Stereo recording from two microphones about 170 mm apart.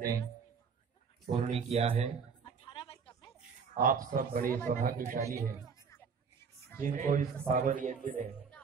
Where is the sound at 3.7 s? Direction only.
55° right (ahead or behind).